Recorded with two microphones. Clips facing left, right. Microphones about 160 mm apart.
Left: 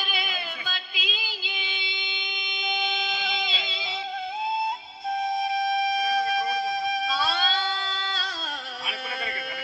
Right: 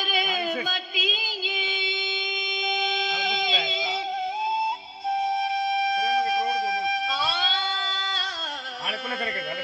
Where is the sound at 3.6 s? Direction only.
40° right (ahead or behind).